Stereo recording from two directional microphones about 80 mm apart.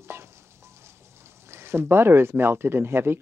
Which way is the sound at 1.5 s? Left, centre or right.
Right.